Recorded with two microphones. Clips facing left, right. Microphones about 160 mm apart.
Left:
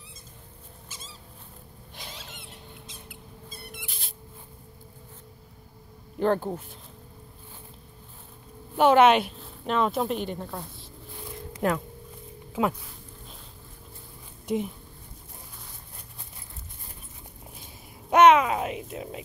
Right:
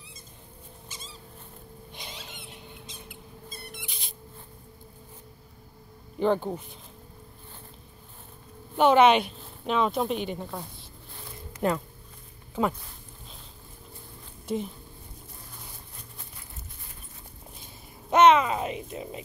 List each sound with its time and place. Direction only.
0.8 s a sound: 5° left (ahead or behind)
2.0 s squeak: centre (ahead or behind)
6.1 s a woman's voice: 5° left (ahead or behind)
8.7 s a woman's voice: 5° left (ahead or behind)
11.1 s zipper: 5° left (ahead or behind)
12.5 s speech: 5° left (ahead or behind)
14.5 s speech: 15° left (ahead or behind)
18.1 s a sound: 10° left (ahead or behind)